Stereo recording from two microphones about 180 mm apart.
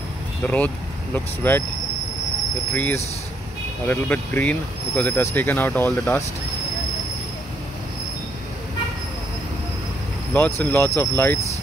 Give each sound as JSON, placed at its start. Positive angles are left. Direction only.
{"t": 0.4, "sound": "speech", "side_deg": 10}
{"t": 2.7, "sound": "speech", "side_deg": 10}
{"t": 10.3, "sound": "speech", "side_deg": 10}